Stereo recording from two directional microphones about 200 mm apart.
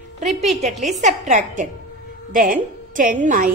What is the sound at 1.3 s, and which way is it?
A woman's voice, 40° right (ahead or behind).